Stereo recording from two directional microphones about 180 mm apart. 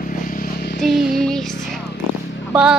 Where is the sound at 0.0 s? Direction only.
50° left (ahead or behind).